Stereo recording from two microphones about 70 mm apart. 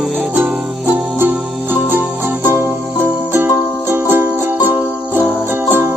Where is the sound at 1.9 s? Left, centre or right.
Right.